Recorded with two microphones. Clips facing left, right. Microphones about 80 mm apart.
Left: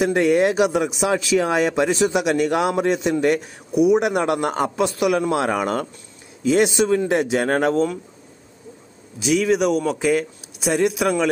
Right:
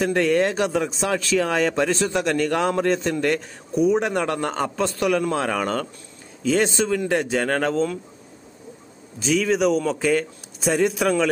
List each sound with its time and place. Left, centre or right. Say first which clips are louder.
0.0 s speech: left 3 dB; centre
9.2 s speech: left 2 dB; centre